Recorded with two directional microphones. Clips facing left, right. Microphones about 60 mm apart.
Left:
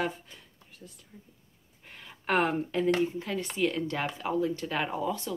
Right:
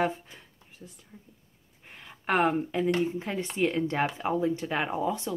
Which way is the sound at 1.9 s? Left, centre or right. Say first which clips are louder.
Right 1 dB; centre.